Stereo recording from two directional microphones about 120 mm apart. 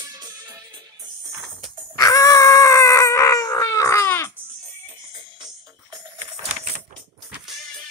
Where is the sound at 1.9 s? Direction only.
30° left (ahead or behind).